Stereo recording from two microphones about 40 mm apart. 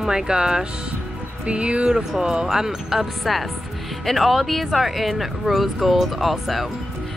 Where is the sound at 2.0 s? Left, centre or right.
Centre.